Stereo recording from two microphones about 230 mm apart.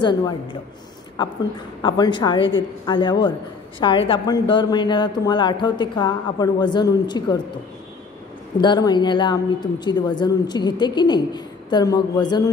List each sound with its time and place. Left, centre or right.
0.0 s speech: centre
8.5 s speech: centre